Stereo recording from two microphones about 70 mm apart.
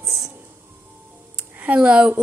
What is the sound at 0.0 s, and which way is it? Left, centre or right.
Music, centre.